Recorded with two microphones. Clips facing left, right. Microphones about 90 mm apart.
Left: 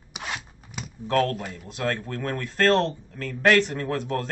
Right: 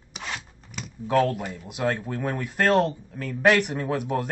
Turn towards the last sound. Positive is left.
turn(degrees=-15)  # may be behind; listen again after turning